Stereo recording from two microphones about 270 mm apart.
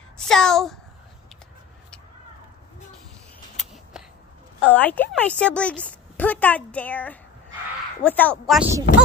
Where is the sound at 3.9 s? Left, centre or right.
Centre.